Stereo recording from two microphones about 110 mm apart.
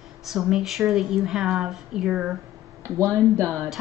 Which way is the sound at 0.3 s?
5° right (ahead or behind).